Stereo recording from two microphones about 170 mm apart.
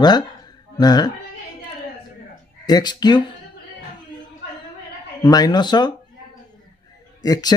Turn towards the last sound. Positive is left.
turn(degrees=20)  # may be behind; listen again after turning